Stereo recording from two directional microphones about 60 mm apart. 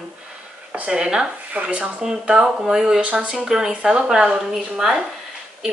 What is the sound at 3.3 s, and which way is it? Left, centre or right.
A woman's voice, centre.